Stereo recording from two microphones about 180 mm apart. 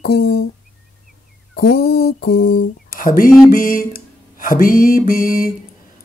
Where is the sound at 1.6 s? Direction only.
60° left (ahead or behind).